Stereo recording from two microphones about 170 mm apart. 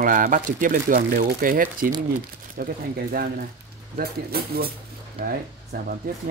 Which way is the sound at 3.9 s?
65° right (ahead or behind).